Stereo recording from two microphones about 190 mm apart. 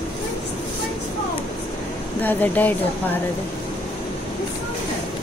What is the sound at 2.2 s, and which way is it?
Speech, 10° left (ahead or behind).